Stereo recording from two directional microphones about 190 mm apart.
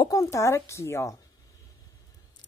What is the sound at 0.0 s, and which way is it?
Speech, 15° left (ahead or behind).